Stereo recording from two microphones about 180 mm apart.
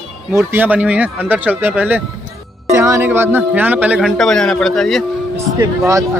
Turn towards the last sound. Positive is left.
turn(degrees=-20)  # may be behind; listen again after turning